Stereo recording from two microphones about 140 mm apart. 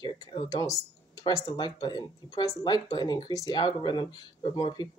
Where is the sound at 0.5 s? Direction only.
25° left (ahead or behind).